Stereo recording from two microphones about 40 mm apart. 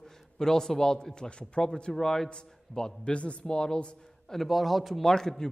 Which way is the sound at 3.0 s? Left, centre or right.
Left.